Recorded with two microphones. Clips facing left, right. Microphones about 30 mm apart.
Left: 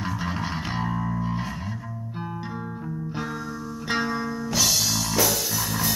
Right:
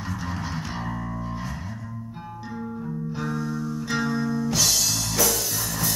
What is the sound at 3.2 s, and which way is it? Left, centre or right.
Music, left.